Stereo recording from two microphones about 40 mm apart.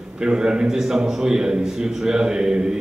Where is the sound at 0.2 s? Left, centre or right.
Right.